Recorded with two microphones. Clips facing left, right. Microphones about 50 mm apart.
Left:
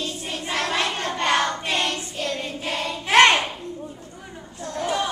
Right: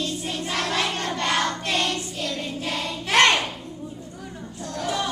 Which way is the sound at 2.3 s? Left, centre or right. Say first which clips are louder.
Left 1 dB; centre.